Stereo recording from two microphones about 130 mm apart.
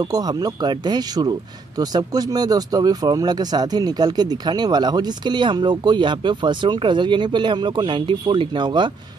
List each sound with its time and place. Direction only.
0.0 s speech: 30° right (ahead or behind)